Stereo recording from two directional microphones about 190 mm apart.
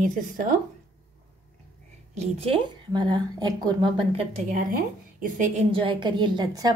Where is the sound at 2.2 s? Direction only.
30° right (ahead or behind).